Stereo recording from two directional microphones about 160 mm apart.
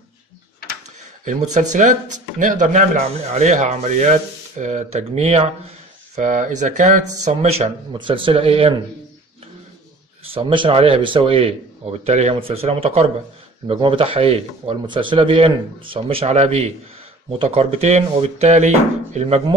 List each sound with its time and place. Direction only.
1.2 s speech: 50° right (ahead or behind)
6.1 s speech: 50° right (ahead or behind)
10.3 s speech: 35° right (ahead or behind)